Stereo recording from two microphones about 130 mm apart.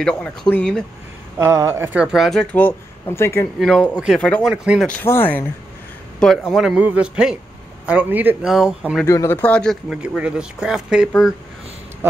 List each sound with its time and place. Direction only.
0.0 s speech: 5° left (ahead or behind)
1.4 s speech: 20° right (ahead or behind)
2.0 s speech: centre (ahead or behind)
2.5 s speech: 15° left (ahead or behind)
3.5 s speech: 5° left (ahead or behind)
4.8 s speech: 15° left (ahead or behind)
6.1 s speech: 5° left (ahead or behind); by 8.4 s 15° right (ahead or behind)
8.4 s speech: 5° right (ahead or behind)
9.0 s speech: 25° left (ahead or behind)
9.4 s speech: 5° left (ahead or behind)
9.8 s speech: 10° right (ahead or behind)